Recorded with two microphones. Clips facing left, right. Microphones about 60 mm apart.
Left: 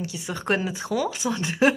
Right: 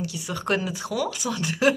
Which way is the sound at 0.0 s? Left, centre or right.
Left.